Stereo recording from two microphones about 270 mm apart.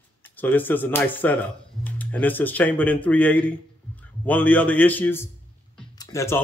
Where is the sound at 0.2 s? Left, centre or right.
Centre.